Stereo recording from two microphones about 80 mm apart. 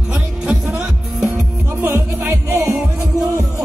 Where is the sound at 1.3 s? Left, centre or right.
Right.